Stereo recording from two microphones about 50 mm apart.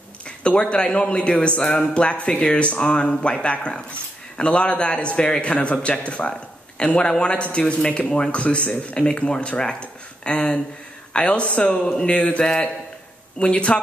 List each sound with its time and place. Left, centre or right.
0.4 s speech: left